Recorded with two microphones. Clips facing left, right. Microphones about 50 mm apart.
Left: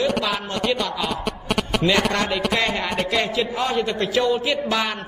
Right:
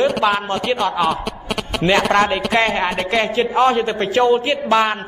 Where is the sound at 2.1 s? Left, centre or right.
Right.